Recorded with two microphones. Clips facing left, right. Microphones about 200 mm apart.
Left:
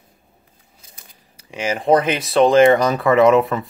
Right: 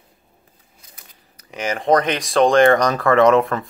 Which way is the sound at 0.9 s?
30° left (ahead or behind).